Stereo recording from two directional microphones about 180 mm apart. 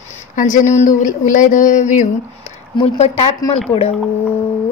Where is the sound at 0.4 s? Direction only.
45° left (ahead or behind).